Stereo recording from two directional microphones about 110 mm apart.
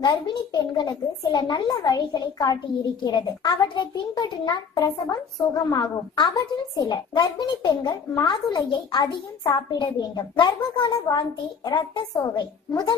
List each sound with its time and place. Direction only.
0.0 s speech: 40° left (ahead or behind)